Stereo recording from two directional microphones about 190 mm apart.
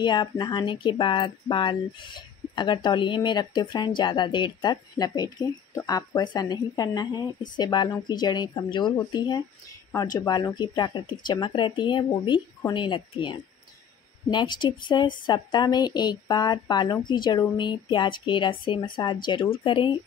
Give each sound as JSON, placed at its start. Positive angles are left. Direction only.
{"t": 0.0, "sound": "speech", "side_deg": 25}